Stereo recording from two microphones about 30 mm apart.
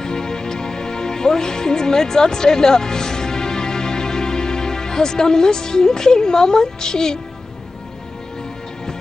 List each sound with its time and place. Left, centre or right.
0.0 s music: left